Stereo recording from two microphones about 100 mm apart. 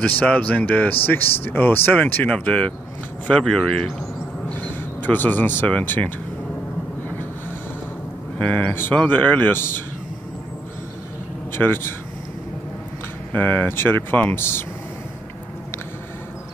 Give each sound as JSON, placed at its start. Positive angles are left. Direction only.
{"t": 0.2, "sound": "speech", "side_deg": 15}
{"t": 8.4, "sound": "speech", "side_deg": 15}
{"t": 11.5, "sound": "speech", "side_deg": 25}
{"t": 13.3, "sound": "speech", "side_deg": 20}